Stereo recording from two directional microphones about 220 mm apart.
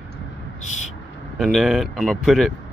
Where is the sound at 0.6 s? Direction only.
35° left (ahead or behind).